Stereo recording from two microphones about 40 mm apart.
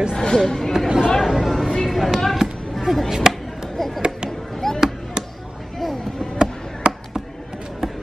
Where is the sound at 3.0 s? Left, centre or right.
Centre.